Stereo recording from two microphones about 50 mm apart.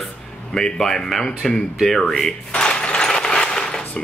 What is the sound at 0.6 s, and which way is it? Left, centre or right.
Speech, centre.